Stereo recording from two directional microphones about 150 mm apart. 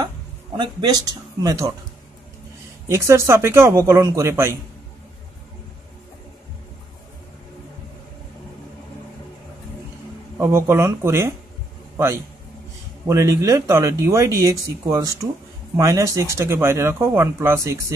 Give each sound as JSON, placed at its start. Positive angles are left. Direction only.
{"t": 0.6, "sound": "speech", "side_deg": -30}
{"t": 2.9, "sound": "speech", "side_deg": -20}
{"t": 10.4, "sound": "speech", "side_deg": -20}
{"t": 13.0, "sound": "speech", "side_deg": -20}